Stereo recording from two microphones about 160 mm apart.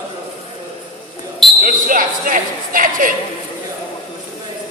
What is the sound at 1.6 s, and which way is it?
Speech, 60° right (ahead or behind).